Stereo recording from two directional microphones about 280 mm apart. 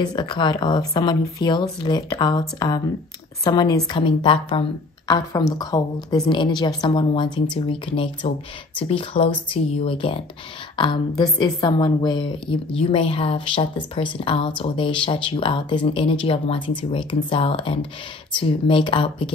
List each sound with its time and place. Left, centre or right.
0.0 s a woman's voice: centre